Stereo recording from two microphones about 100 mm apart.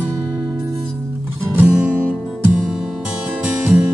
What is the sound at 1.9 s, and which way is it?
Music, 20° right (ahead or behind).